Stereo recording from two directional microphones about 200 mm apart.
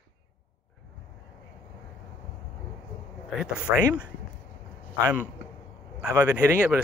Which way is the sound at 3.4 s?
5° right (ahead or behind).